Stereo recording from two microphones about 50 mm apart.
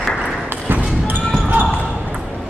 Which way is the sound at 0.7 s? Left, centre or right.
Right.